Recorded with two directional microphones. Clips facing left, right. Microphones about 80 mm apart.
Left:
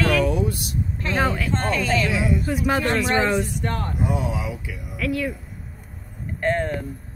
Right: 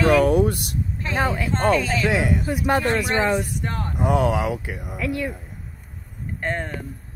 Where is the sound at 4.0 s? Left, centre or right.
Right.